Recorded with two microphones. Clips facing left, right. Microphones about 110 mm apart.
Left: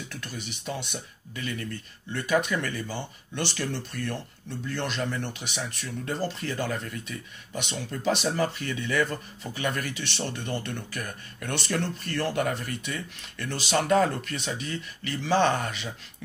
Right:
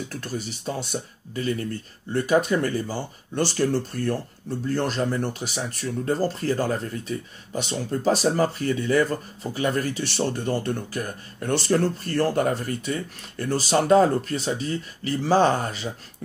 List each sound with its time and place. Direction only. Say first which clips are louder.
0.1 s speech: right 7 dB; 40° right (ahead or behind)